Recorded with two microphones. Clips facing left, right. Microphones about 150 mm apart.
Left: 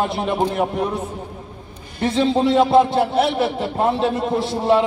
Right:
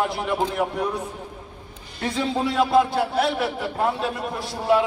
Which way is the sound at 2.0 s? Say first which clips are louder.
Left 7 dB; 25° left (ahead or behind).